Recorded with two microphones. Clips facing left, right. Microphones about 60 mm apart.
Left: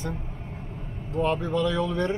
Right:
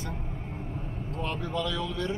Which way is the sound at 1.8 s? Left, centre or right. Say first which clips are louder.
Left 6 dB; left.